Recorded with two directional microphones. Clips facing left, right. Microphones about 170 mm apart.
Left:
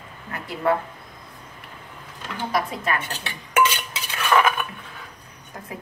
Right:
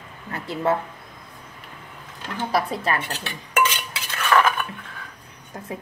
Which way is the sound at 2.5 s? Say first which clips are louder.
Right 2 dB; 35° right (ahead or behind).